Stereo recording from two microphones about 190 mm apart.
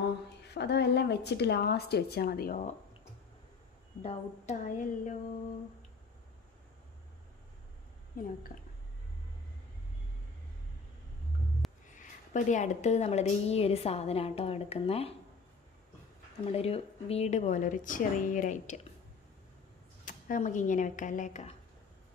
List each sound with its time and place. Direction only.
0.4 s speech: 60° left (ahead or behind); by 2.7 s 45° left (ahead or behind)
4.0 s speech: 35° left (ahead or behind)
8.2 s a woman's voice: 45° left (ahead or behind)
11.9 s speech: 40° left (ahead or behind)
16.5 s speech: 30° left (ahead or behind)
20.1 s speech: 45° left (ahead or behind)